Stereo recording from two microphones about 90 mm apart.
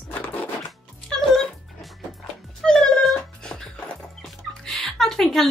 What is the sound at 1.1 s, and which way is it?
Music, 5° left (ahead or behind).